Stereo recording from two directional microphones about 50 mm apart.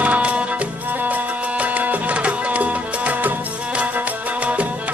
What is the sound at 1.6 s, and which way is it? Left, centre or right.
Music, right.